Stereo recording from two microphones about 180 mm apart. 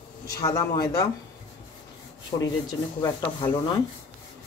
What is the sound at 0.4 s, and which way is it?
Speech, 20° left (ahead or behind).